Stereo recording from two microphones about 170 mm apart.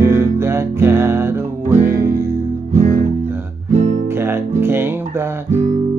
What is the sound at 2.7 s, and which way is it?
Music, 45° right (ahead or behind).